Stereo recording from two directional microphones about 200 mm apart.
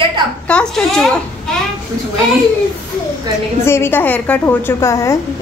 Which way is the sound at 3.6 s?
10° left (ahead or behind).